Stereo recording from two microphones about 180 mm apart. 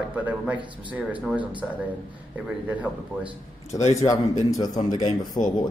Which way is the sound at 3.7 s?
40° left (ahead or behind).